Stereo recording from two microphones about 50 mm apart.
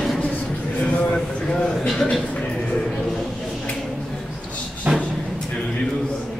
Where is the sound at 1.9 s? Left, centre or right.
Centre.